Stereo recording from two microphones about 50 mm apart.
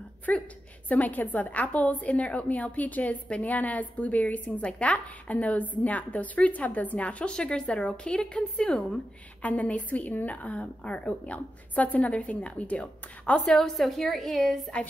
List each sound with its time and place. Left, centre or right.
0.3 s a woman's voice: left
9.4 s a woman's voice: left; by 14.6 s centre